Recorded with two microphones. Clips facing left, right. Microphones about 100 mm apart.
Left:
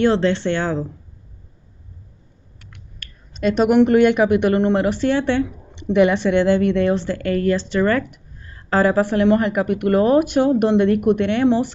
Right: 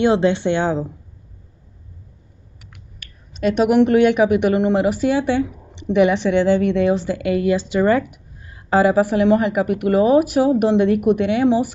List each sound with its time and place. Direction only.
0.0 s speech: 15° right (ahead or behind)
2.6 s speech: 5° right (ahead or behind)